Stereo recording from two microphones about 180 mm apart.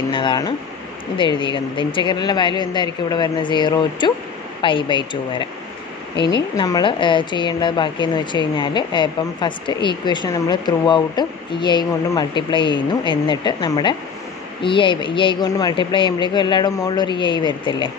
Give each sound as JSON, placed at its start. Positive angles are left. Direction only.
{"t": 0.1, "sound": "a woman's voice", "side_deg": 25}